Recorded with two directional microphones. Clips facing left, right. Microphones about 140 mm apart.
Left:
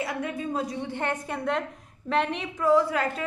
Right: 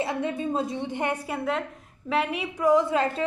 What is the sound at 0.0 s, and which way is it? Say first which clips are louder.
A woman's voice: right 3 dB; 25° right (ahead or behind).